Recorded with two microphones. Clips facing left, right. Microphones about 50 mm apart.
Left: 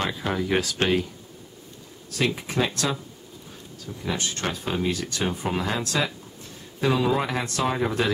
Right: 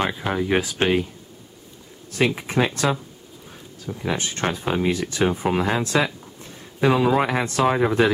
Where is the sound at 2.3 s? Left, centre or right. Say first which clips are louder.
Right 4 dB; right.